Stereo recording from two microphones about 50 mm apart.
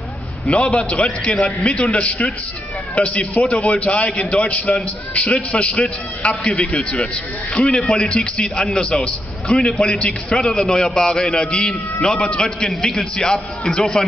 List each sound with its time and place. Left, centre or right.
0.5 s a man's voice: left; by 14.0 s centre